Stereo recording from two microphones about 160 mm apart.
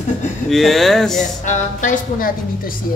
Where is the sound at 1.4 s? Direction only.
50° left (ahead or behind).